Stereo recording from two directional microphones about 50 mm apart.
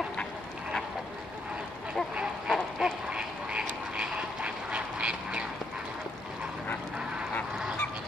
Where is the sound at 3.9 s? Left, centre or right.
Right.